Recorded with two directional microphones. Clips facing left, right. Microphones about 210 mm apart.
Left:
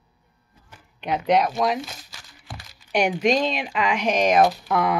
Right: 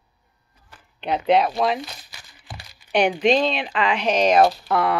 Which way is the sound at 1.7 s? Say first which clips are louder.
Right 1 dB; 5° left (ahead or behind).